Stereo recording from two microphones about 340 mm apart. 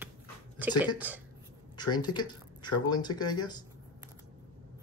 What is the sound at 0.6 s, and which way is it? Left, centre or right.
Speech, centre.